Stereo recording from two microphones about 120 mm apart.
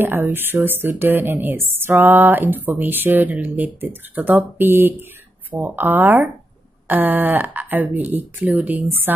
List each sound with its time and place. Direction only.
0.0 s a woman's voice: 15° right (ahead or behind)